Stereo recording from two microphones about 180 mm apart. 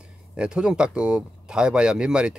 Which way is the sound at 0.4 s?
5° right (ahead or behind).